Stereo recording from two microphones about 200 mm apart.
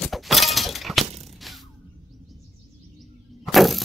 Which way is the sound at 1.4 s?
Centre (ahead or behind).